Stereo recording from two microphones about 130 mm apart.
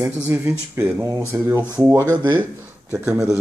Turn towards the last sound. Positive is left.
turn(degrees=-15)  # may be behind; listen again after turning